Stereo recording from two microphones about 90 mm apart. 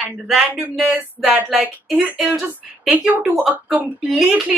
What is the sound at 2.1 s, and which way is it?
Speech, 5° right (ahead or behind).